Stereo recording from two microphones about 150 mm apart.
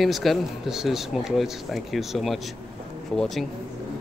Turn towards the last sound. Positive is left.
turn(degrees=0)  # may be behind; listen again after turning